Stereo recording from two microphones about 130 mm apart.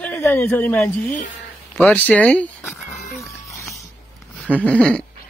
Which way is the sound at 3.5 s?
25° left (ahead or behind).